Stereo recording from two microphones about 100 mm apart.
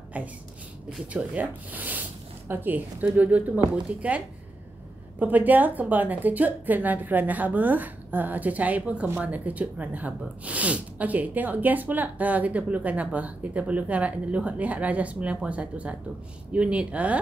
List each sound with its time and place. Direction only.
0.2 s a woman's voice: 15° right (ahead or behind)
5.2 s a woman's voice: 15° right (ahead or behind)